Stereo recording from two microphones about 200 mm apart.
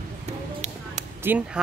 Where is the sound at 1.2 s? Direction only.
10° right (ahead or behind).